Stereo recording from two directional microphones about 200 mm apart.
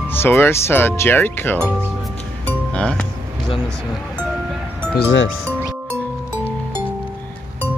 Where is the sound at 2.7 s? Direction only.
5° left (ahead or behind).